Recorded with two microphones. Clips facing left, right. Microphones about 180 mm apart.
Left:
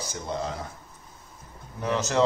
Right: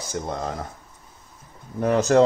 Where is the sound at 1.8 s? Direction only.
50° right (ahead or behind).